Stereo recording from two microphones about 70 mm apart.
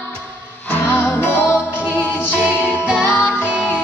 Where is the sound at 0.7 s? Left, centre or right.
Left.